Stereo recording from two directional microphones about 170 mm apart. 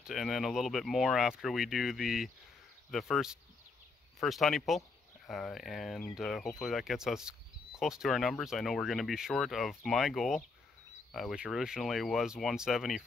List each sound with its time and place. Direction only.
0.0 s speech: centre (ahead or behind)